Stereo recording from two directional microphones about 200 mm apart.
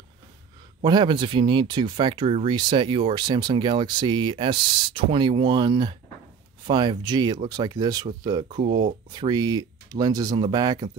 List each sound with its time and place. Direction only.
0.8 s speech: 20° right (ahead or behind)